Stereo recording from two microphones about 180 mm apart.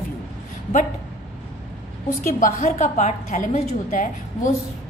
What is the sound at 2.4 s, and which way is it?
A woman's voice, 40° left (ahead or behind).